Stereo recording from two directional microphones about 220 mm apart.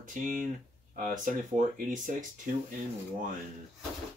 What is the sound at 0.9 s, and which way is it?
Speech, 35° right (ahead or behind).